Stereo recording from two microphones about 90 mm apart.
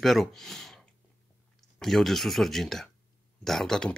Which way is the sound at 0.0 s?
5° left (ahead or behind).